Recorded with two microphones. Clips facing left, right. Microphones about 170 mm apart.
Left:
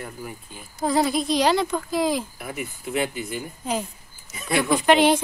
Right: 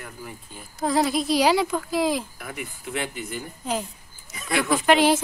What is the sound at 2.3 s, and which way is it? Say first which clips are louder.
Speech: left 3 dB; 20° left (ahead or behind).